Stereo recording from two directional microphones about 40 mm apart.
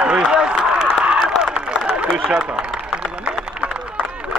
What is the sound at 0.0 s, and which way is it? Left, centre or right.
Run, right.